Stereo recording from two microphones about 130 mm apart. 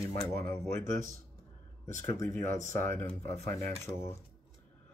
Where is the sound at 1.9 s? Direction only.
20° left (ahead or behind).